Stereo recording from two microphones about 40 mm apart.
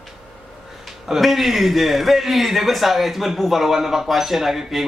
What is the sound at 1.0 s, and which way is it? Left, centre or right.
A man's voice, centre.